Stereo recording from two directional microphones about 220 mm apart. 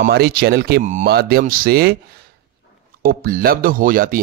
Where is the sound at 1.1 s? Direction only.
45° right (ahead or behind).